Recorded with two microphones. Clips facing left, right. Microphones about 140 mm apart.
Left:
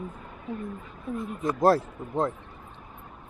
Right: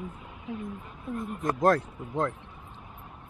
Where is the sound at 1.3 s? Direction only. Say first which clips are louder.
Left 2 dB; 5° left (ahead or behind).